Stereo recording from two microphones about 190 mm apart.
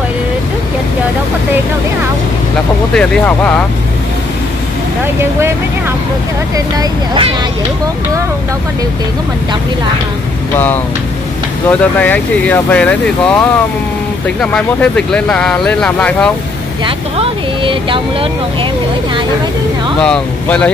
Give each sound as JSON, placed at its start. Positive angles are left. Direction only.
{"t": 2.9, "sound": "speech", "side_deg": 5}
{"t": 6.5, "sound": "speech", "side_deg": -20}
{"t": 11.8, "sound": "speech", "side_deg": 10}
{"t": 16.8, "sound": "speech", "side_deg": -25}
{"t": 20.0, "sound": "speech", "side_deg": 5}